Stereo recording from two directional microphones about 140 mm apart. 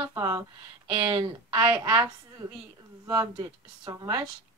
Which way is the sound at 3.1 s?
30° right (ahead or behind).